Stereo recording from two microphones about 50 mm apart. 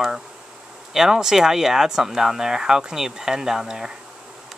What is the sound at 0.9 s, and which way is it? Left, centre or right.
Speech, centre.